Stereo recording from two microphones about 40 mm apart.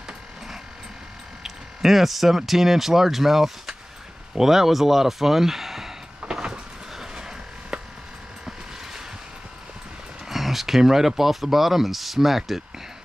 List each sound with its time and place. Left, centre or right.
1.4 s speech: centre
6.3 s a sound: centre
10.2 s speech: centre